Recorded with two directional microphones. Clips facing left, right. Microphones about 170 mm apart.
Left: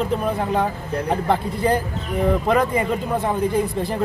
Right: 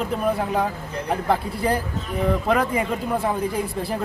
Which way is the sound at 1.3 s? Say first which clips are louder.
Left 2 dB; 10° right (ahead or behind).